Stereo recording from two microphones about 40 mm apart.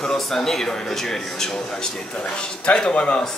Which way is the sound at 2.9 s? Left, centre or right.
Left.